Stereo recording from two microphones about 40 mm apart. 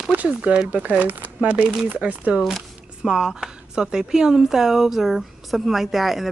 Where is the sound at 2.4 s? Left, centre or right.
Centre.